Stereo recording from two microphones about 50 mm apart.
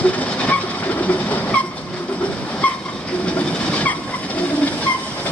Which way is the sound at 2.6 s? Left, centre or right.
Left.